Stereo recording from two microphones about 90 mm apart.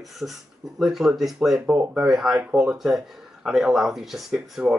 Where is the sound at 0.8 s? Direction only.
5° right (ahead or behind).